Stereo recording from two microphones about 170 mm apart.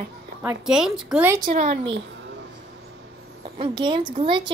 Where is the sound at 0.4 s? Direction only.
10° right (ahead or behind).